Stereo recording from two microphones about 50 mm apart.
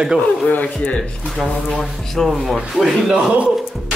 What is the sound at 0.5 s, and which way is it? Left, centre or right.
Speech, left.